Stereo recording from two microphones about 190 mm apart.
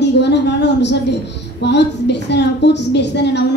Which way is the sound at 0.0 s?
65° left (ahead or behind).